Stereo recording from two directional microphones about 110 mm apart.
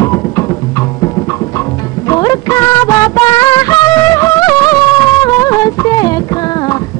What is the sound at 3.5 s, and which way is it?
Music of bollywood, 30° left (ahead or behind).